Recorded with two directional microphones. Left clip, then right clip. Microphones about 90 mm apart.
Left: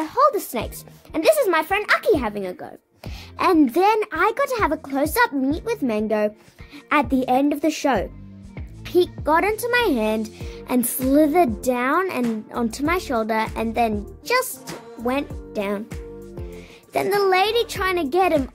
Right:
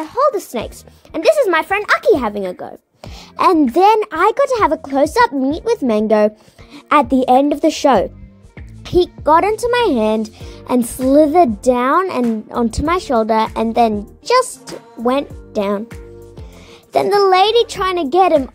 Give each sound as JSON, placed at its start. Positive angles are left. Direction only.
{"t": 0.0, "sound": "music", "side_deg": -20}
{"t": 1.1, "sound": "a child's voice", "side_deg": -35}
{"t": 1.5, "sound": "a child's voice", "side_deg": -55}
{"t": 5.9, "sound": "a woman's voice", "side_deg": -55}
{"t": 6.7, "sound": "speech", "side_deg": -40}
{"t": 8.8, "sound": "a child's voice", "side_deg": -35}
{"t": 15.0, "sound": "speech", "side_deg": 0}
{"t": 15.5, "sound": "speech", "side_deg": -50}
{"t": 16.9, "sound": "a child's voice", "side_deg": -45}